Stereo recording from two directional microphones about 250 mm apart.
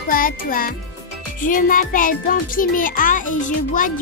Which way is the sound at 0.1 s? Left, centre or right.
Left.